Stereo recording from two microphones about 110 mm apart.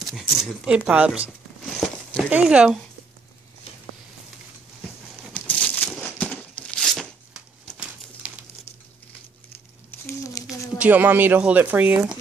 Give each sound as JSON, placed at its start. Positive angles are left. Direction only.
{"t": 0.0, "sound": "speech", "side_deg": 0}
{"t": 0.7, "sound": "speech", "side_deg": -15}
{"t": 5.3, "sound": "crumpling", "side_deg": 10}
{"t": 7.7, "sound": "bird", "side_deg": -10}
{"t": 9.8, "sound": "a sound", "side_deg": 20}
{"t": 10.8, "sound": "speech", "side_deg": -15}